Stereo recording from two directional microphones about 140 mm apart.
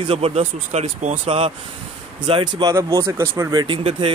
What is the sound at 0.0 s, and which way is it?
Speech, 40° right (ahead or behind).